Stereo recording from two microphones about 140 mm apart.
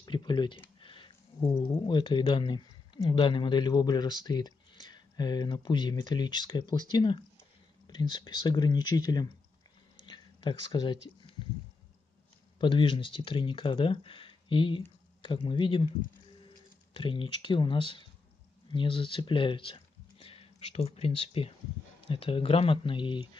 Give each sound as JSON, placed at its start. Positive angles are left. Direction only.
{"t": 0.0, "sound": "speech", "side_deg": 30}
{"t": 10.0, "sound": "a sound", "side_deg": 35}
{"t": 12.5, "sound": "speech", "side_deg": 35}
{"t": 16.9, "sound": "speech", "side_deg": 40}